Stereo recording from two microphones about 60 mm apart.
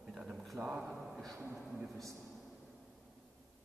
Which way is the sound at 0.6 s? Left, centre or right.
Right.